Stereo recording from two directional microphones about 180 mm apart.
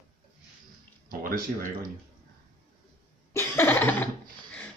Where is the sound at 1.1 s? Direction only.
50° right (ahead or behind).